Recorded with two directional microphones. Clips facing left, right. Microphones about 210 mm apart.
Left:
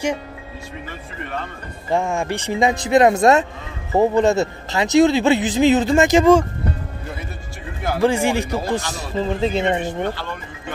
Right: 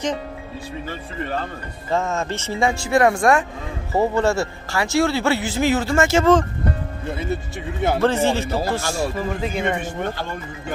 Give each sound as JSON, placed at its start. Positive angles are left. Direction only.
{"t": 1.2, "sound": "speech", "side_deg": -35}
{"t": 1.9, "sound": "speech", "side_deg": 15}
{"t": 8.0, "sound": "speech", "side_deg": 10}